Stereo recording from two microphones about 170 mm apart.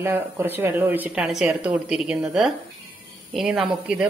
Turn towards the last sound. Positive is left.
turn(degrees=-5)  # may be behind; listen again after turning